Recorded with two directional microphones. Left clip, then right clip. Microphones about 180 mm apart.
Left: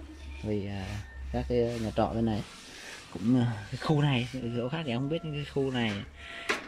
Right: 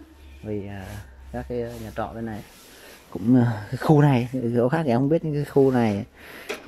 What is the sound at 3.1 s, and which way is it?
Speech, 20° right (ahead or behind).